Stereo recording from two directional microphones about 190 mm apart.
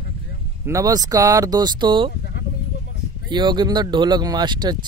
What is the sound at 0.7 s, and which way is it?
Speech, 20° right (ahead or behind).